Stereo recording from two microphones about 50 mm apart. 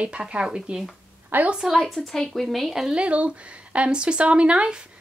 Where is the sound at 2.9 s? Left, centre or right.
Right.